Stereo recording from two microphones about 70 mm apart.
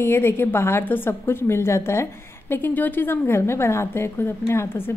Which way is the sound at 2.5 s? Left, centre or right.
Left.